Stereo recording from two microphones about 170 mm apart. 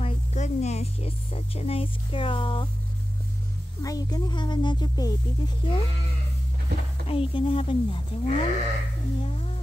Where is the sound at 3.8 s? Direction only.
20° left (ahead or behind).